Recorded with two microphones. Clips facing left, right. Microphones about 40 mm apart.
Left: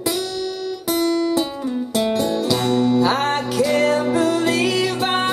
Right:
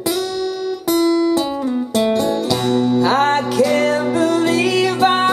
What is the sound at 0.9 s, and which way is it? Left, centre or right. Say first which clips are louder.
Music: right 4 dB; centre.